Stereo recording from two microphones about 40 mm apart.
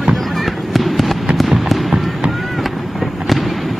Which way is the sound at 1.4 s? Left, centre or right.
Centre.